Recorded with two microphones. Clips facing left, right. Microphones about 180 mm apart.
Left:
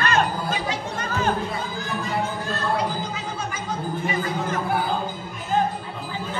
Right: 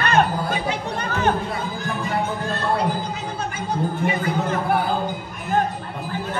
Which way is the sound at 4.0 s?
60° right (ahead or behind).